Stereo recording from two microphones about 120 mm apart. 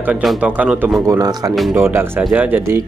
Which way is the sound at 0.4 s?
10° right (ahead or behind).